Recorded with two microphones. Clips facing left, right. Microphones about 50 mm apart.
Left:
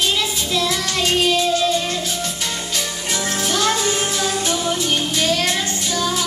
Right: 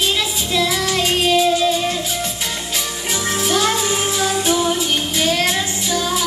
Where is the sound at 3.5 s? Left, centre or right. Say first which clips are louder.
Right 1 dB; centre.